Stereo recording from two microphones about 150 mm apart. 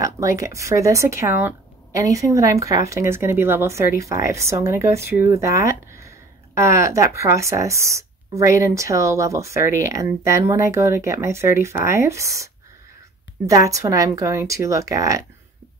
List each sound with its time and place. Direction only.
0.0 s speech: 20° right (ahead or behind)
13.5 s speech: 20° right (ahead or behind)